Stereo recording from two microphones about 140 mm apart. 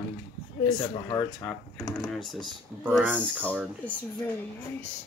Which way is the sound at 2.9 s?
10° right (ahead or behind).